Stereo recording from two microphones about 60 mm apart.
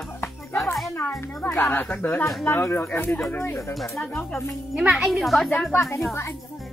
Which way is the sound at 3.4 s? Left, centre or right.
Left.